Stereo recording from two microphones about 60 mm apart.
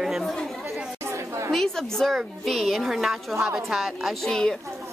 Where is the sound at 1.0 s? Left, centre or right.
Right.